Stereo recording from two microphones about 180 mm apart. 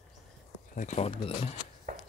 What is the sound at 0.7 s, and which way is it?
Speech, 40° left (ahead or behind).